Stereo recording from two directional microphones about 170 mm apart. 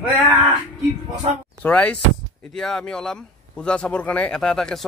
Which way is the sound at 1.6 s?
10° left (ahead or behind).